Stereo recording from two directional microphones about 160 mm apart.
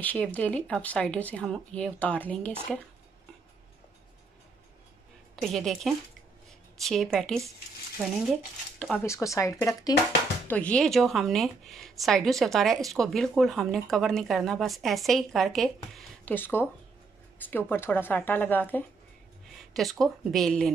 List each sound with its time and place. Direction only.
0.0 s speech: 10° left (ahead or behind)
5.3 s a woman's voice: centre (ahead or behind)
9.0 s speech: 20° left (ahead or behind)
10.5 s a woman's voice: 5° left (ahead or behind)
16.3 s a woman's voice: 15° left (ahead or behind)